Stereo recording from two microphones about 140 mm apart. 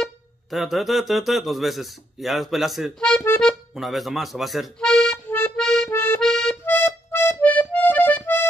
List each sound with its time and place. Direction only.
0.0 s speech: centre (ahead or behind)
3.7 s speech: centre (ahead or behind)
5.2 s music: 15° left (ahead or behind)
5.6 s accordion: 5° left (ahead or behind)
5.9 s accordion: 15° left (ahead or behind)
6.2 s accordion: 5° left (ahead or behind)
6.6 s accordion: 15° left (ahead or behind)